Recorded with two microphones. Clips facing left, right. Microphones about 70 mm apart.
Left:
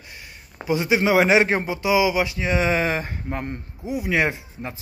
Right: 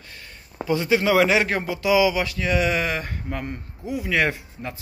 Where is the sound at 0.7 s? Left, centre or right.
Centre.